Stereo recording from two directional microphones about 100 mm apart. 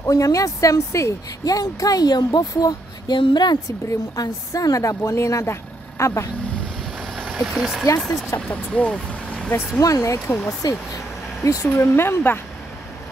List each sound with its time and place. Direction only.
0.0 s speech: 35° left (ahead or behind)
7.2 s speech: centre (ahead or behind)
8.4 s speech: 10° left (ahead or behind)
9.8 s speech: 35° left (ahead or behind)